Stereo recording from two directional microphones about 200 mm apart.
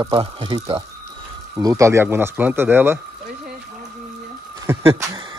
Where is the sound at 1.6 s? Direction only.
15° right (ahead or behind).